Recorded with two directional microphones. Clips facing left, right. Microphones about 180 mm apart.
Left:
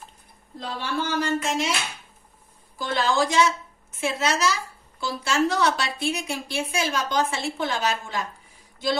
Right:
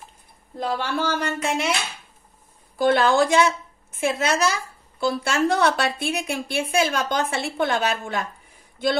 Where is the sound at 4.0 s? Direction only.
55° right (ahead or behind).